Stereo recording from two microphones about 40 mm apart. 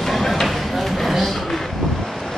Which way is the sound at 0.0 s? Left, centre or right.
Centre.